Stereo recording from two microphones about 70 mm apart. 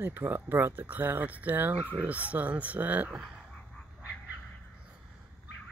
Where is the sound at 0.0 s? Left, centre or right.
Right.